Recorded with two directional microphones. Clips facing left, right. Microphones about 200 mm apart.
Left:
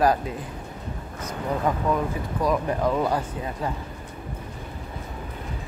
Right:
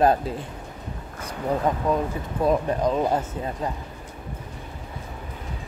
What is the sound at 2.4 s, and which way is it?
Speech, 20° right (ahead or behind).